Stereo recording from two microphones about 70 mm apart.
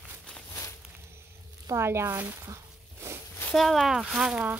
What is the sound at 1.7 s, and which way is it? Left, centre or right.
Speech, right.